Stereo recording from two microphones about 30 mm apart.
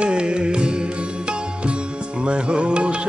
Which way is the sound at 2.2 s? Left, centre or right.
Right.